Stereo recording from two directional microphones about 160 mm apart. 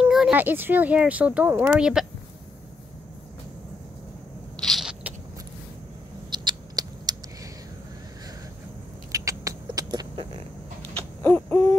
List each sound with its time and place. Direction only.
0.0 s speech: 5° right (ahead or behind)
4.6 s a sound: centre (ahead or behind)
6.3 s rodents: 25° right (ahead or behind)
9.1 s vehicle: 20° right (ahead or behind)
11.2 s hoot: 10° left (ahead or behind)